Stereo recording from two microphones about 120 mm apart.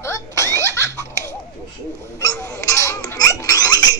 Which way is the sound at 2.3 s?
25° left (ahead or behind).